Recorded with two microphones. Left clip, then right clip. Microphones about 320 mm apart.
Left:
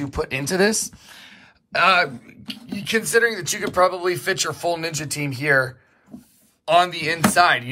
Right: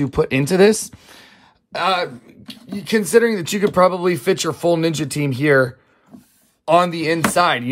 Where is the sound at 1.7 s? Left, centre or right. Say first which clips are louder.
Left 2 dB; centre.